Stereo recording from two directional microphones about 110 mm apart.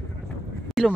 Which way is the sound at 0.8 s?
Centre (ahead or behind).